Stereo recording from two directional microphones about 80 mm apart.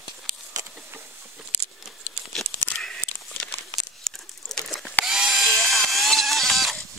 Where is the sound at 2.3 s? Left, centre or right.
Centre.